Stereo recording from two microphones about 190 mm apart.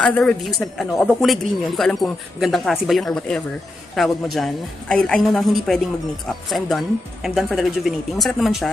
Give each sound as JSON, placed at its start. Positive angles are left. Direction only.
{"t": 0.0, "sound": "speech", "side_deg": 5}
{"t": 7.2, "sound": "speech", "side_deg": 0}